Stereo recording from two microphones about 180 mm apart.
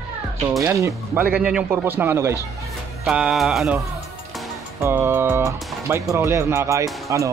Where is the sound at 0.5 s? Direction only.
15° right (ahead or behind).